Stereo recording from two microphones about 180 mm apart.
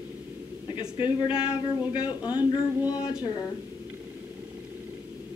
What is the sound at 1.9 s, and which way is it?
Speech, 25° left (ahead or behind).